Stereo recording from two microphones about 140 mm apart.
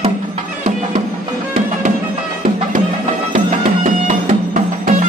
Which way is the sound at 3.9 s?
60° right (ahead or behind).